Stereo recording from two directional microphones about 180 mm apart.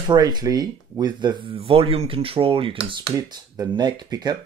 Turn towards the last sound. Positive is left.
turn(degrees=-20)  # may be behind; listen again after turning